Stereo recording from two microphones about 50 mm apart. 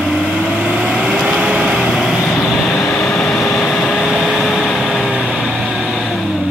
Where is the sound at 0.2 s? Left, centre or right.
Left.